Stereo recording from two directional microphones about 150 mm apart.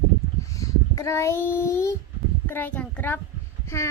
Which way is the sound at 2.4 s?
10° left (ahead or behind).